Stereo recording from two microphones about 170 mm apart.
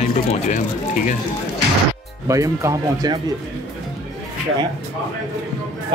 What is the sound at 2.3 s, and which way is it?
Speech, 20° right (ahead or behind).